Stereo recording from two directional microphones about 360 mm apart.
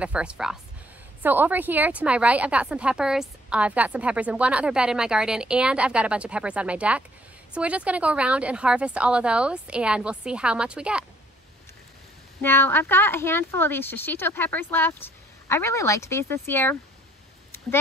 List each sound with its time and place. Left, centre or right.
0.0 s a woman's voice: centre
12.4 s a woman's voice: centre